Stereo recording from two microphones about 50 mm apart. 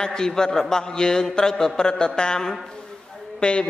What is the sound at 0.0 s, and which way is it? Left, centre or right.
A man's voice, centre.